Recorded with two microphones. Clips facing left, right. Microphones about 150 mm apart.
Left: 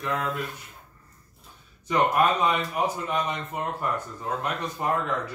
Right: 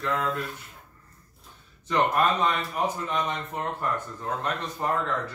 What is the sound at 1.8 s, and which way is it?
Speech, 10° left (ahead or behind).